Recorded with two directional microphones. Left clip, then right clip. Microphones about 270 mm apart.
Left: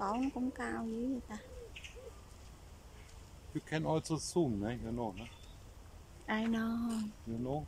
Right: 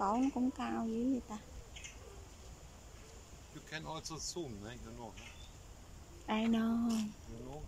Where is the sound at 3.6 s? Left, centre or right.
Left.